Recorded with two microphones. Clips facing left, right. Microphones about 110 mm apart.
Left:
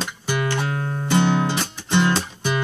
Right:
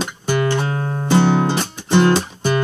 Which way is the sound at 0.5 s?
30° right (ahead or behind).